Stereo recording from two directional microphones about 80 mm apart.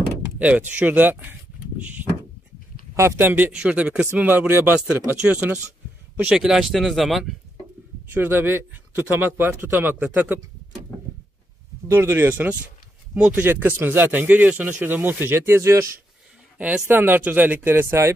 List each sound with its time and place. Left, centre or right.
0.4 s speech: centre
3.0 s speech: right
3.5 s speech: centre
6.2 s speech: centre
8.1 s speech: right
11.9 s speech: right
16.5 s speech: centre; by 18.1 s right